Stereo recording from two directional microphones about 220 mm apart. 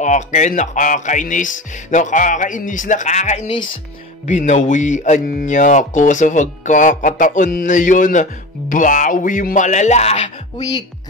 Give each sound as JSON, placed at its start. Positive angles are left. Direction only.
{"t": 0.0, "sound": "speech", "side_deg": 35}